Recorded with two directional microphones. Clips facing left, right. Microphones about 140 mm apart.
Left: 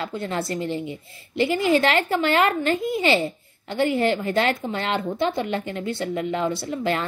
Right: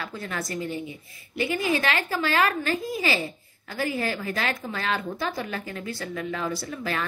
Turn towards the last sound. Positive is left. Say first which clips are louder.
# left 5 dB
turn(degrees=25)  # may be behind; listen again after turning